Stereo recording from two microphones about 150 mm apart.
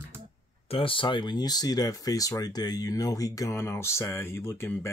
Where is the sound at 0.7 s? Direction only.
35° left (ahead or behind).